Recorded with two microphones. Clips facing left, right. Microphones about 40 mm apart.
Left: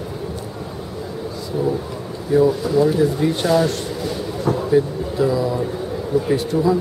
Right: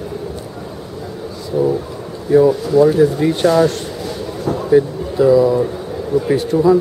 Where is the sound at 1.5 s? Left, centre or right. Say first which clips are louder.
Right 5 dB; centre.